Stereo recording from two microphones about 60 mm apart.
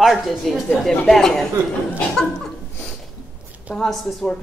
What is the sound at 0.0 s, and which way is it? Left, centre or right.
Speech, centre.